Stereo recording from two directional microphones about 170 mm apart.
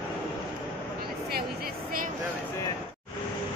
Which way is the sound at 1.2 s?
60° right (ahead or behind).